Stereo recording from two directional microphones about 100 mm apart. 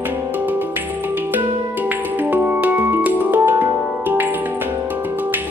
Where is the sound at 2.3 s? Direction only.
15° right (ahead or behind).